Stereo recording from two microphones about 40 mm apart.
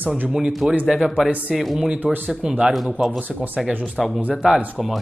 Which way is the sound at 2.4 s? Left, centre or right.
Right.